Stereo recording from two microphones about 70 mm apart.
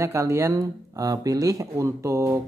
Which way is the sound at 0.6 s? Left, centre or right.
Right.